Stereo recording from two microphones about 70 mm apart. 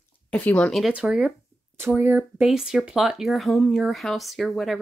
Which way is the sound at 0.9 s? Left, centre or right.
Centre.